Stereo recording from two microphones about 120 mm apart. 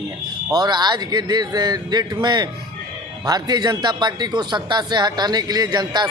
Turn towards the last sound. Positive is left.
turn(degrees=-35)  # may be behind; listen again after turning